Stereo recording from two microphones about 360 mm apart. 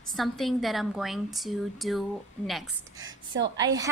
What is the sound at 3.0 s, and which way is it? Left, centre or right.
Speech, right.